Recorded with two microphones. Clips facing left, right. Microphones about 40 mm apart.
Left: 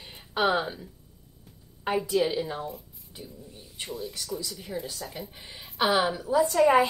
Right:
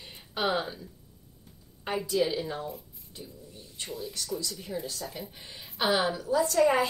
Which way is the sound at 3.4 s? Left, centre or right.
Centre.